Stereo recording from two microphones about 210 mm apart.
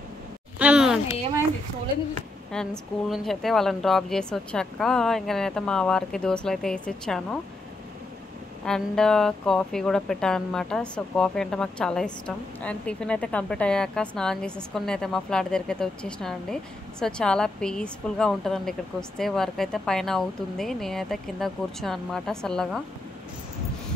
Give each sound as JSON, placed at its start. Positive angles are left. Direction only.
{"t": 0.6, "sound": "a sound", "side_deg": -5}
{"t": 2.5, "sound": "speech", "side_deg": 5}
{"t": 8.6, "sound": "speech", "side_deg": 5}